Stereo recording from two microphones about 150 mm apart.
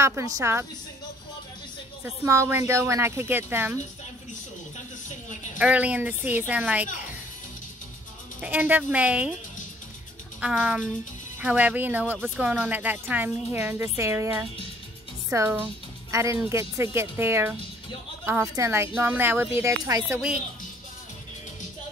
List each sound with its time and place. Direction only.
0.0 s speech: 20° right (ahead or behind)
2.0 s speech: 20° right (ahead or behind)
5.6 s speech: 10° right (ahead or behind)
8.4 s speech: 10° right (ahead or behind)
10.4 s speech: 5° right (ahead or behind)